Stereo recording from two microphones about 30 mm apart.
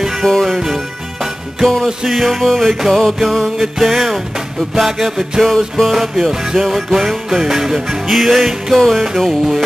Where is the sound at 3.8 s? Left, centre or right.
Centre.